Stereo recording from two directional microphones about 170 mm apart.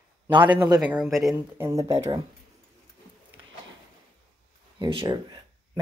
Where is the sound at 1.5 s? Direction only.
15° right (ahead or behind).